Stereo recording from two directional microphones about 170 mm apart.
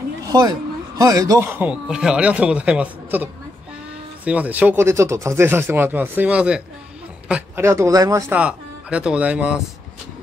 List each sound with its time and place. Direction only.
0.2 s speech: 20° right (ahead or behind)
8.4 s speech: 5° right (ahead or behind)